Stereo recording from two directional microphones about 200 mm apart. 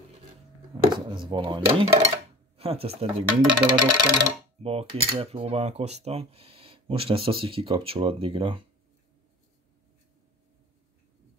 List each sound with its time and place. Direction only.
0.9 s speech: 25° right (ahead or behind)
3.3 s speech: 5° right (ahead or behind)
3.8 s speech: 20° right (ahead or behind)